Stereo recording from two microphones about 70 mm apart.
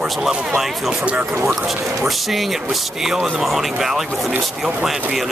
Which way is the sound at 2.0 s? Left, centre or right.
Centre.